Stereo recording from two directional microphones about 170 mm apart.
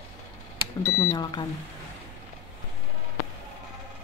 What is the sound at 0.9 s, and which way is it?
Speech, 15° left (ahead or behind).